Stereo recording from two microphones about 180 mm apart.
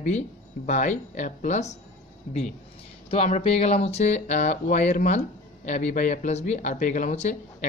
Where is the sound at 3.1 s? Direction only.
35° left (ahead or behind).